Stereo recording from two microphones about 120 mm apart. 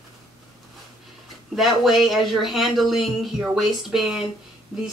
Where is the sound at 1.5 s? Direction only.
Centre (ahead or behind).